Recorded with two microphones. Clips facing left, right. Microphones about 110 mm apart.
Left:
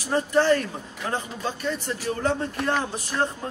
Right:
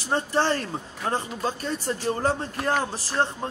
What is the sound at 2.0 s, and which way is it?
Speech, 35° right (ahead or behind).